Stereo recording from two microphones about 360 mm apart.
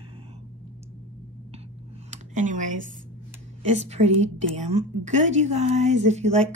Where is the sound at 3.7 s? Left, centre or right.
Centre.